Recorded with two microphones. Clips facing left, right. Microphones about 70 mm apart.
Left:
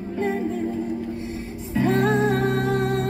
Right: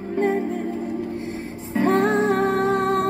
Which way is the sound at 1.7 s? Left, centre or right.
Right.